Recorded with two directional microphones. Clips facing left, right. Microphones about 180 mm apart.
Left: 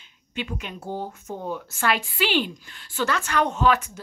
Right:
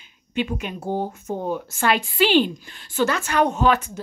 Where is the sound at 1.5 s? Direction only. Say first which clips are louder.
Right 3 dB; 20° right (ahead or behind).